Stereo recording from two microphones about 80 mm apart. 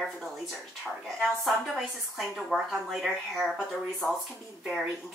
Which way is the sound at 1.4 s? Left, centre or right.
Centre.